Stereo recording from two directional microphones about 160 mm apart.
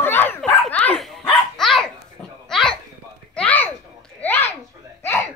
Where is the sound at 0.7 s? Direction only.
10° left (ahead or behind).